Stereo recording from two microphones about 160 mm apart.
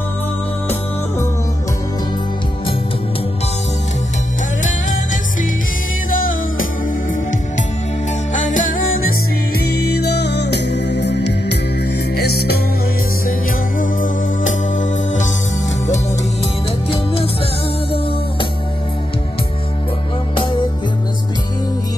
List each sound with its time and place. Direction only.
6.0 s music: 60° left (ahead or behind)
8.3 s music: 55° left (ahead or behind)
9.7 s music: 90° left
13.7 s music: 55° left (ahead or behind)
16.9 s music: 35° left (ahead or behind)